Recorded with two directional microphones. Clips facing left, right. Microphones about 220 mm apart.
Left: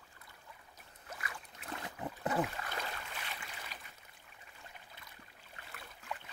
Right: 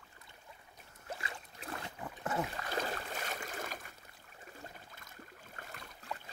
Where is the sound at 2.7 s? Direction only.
40° right (ahead or behind).